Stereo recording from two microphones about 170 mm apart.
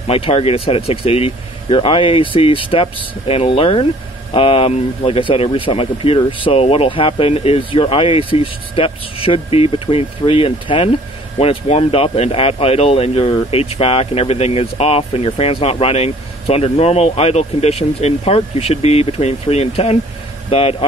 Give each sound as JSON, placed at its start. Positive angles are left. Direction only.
{"t": 0.0, "sound": "speech", "side_deg": 35}